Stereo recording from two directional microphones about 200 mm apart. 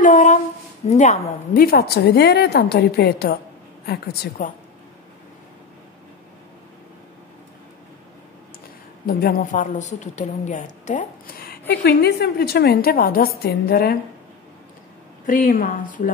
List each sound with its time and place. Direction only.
0.0 s a sound: 35° left (ahead or behind)
0.8 s a woman's voice: 35° left (ahead or behind); by 4.5 s 50° left (ahead or behind)
9.0 s a woman's voice: 50° left (ahead or behind)
15.2 s a woman's voice: 45° left (ahead or behind)